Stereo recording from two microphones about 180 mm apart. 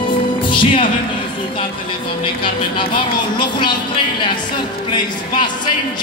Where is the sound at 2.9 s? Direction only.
25° left (ahead or behind).